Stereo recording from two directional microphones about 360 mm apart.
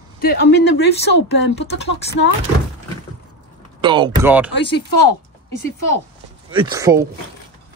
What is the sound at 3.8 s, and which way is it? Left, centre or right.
Speech, centre.